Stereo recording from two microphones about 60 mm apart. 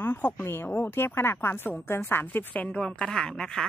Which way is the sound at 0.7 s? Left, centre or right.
Left.